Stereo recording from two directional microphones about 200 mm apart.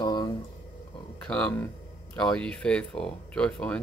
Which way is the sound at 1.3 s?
5° left (ahead or behind).